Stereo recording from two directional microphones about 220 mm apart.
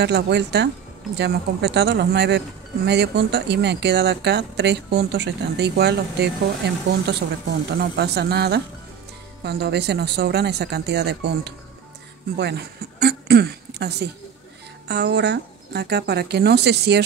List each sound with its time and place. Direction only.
0.0 s speech: 50° right (ahead or behind)